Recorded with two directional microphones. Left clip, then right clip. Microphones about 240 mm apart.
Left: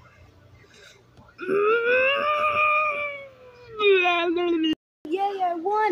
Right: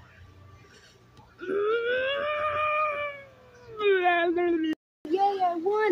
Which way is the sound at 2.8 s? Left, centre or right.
Left.